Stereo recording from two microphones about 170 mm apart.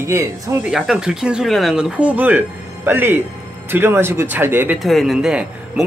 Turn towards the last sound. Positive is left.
turn(degrees=-5)  # may be behind; listen again after turning